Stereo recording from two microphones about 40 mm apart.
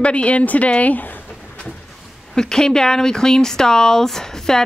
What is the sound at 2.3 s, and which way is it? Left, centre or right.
Speech, centre.